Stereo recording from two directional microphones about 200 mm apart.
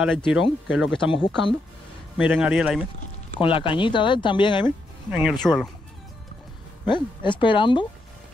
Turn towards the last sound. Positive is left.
turn(degrees=25)  # may be behind; listen again after turning